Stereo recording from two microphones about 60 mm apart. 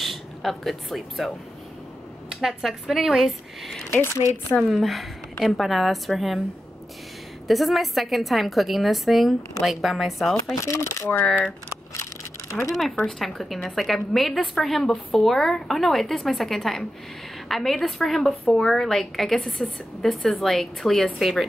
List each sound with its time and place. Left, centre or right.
0.0 s speech: centre
2.4 s a woman's voice: centre
3.9 s a woman's voice: left
4.6 s a woman's voice: centre
7.4 s a woman's voice: centre
10.6 s speech: left
11.9 s a sound: left
12.6 s a woman's voice: centre